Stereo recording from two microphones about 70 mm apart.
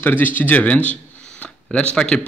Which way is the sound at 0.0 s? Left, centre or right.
Left.